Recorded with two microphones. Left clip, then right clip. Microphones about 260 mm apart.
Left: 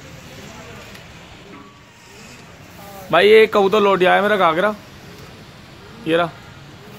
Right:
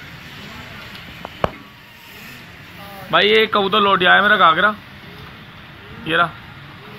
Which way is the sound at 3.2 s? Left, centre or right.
Left.